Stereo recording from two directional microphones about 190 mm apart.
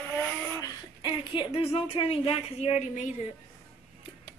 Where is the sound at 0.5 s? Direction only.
25° left (ahead or behind).